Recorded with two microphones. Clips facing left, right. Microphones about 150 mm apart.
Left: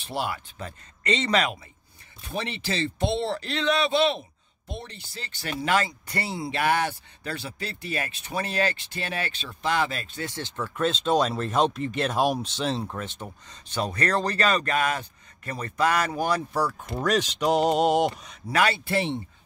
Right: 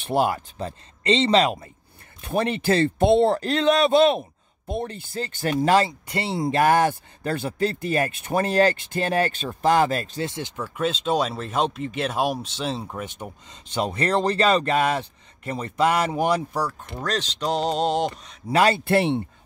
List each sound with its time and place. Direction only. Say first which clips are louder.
0.0 s a man's voice: right 8 dB; 45° right (ahead or behind)
0.6 s speech: right 7 dB; 30° right (ahead or behind)
2.2 s a man's voice: right 9 dB; 50° right (ahead or behind); by 6.3 s 25° right (ahead or behind)
6.3 s a man's voice: right 6 dB; 45° right (ahead or behind)
10.2 s speech: right 4 dB; 15° right (ahead or behind)
10.6 s speech: even; 5° right (ahead or behind); by 16.4 s 20° right (ahead or behind)
17.0 s speech: left 3 dB; 10° left (ahead or behind)
18.5 s speech: right 5 dB; 35° right (ahead or behind)
18.9 s speech: right 6 dB; 60° right (ahead or behind)